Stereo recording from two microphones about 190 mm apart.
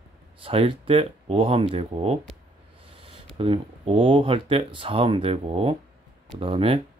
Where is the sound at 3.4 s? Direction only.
30° right (ahead or behind).